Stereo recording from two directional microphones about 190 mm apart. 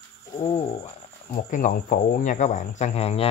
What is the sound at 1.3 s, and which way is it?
Speech, 45° left (ahead or behind).